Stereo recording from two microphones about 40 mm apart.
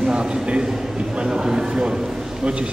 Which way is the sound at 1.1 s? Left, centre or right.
Centre.